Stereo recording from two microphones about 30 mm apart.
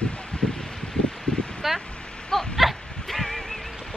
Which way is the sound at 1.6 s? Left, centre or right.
Centre.